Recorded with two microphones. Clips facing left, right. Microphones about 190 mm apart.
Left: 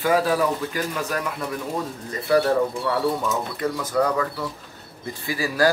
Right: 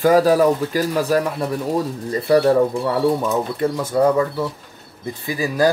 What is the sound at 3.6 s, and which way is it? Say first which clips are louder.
Speech: right 5 dB; 30° right (ahead or behind).